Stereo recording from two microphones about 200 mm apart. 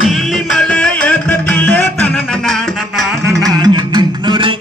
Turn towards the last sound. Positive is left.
turn(degrees=-25)  # may be behind; listen again after turning